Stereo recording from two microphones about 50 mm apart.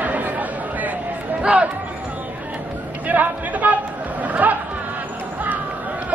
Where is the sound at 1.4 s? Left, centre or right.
Right.